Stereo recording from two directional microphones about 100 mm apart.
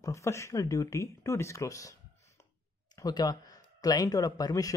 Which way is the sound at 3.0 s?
40° left (ahead or behind).